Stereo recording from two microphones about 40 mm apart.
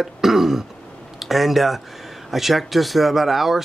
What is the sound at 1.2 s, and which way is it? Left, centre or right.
Speech, centre.